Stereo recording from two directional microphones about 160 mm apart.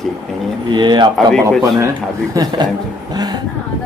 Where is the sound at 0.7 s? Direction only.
30° right (ahead or behind).